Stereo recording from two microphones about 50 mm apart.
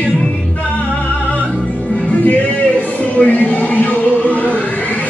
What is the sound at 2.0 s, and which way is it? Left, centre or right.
Music, left.